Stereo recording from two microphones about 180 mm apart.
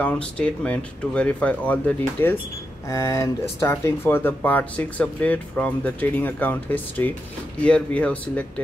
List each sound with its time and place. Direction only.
0.0 s speech: 5° left (ahead or behind)